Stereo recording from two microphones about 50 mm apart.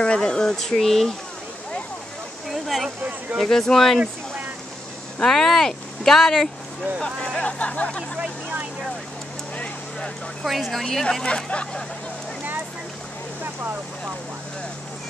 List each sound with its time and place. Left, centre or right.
0.0 s speech: centre
2.4 s a sound: centre
3.4 s speech: centre
5.2 s speech: centre; by 8.0 s left
8.2 s vehicle: right
10.4 s a woman's voice: centre
11.2 s speech: centre
13.4 s vehicle: right